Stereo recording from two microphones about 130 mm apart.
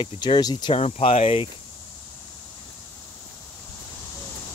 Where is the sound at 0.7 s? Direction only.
55° left (ahead or behind).